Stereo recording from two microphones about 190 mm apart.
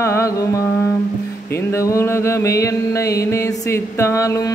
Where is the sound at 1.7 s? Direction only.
15° left (ahead or behind).